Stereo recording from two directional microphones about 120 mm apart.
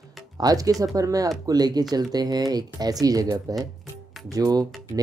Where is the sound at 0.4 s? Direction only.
30° right (ahead or behind).